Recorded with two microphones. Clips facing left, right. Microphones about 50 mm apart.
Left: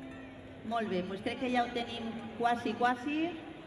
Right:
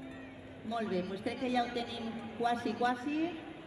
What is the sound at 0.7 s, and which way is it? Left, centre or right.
A man's voice, left.